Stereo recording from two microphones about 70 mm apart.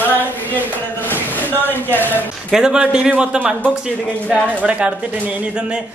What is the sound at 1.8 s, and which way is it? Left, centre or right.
Speech, left.